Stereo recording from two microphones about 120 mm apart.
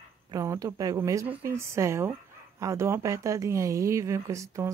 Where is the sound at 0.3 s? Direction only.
25° right (ahead or behind).